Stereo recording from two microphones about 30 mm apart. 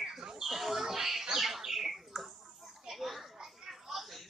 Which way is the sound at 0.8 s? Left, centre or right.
Centre.